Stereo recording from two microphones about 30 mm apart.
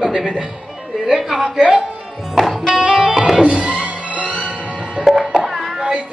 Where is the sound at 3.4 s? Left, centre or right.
Right.